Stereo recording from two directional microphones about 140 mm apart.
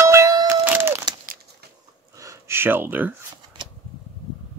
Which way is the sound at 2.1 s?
25° right (ahead or behind).